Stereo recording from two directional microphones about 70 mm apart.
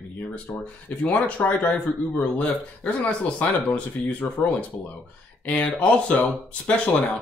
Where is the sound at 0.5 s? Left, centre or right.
Centre.